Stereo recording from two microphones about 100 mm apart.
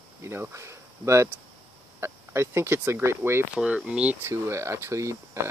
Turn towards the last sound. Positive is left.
turn(degrees=-30)  # may be behind; listen again after turning